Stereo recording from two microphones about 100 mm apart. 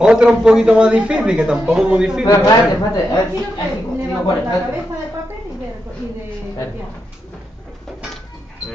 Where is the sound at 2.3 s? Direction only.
30° left (ahead or behind).